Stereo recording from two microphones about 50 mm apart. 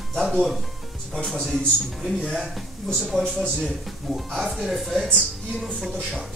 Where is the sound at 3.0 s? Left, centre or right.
Centre.